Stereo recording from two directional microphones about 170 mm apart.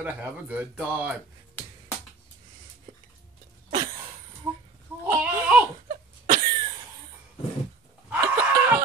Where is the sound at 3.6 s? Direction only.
35° right (ahead or behind).